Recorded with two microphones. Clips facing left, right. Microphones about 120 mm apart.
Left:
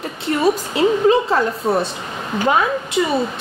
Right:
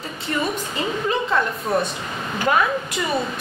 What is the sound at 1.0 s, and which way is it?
Speech, 35° left (ahead or behind).